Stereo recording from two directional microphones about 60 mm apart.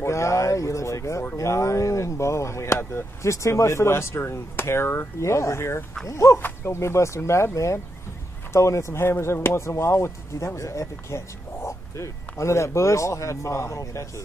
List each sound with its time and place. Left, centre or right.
0.0 s speech: left
6.0 s speech: left
6.3 s speech: left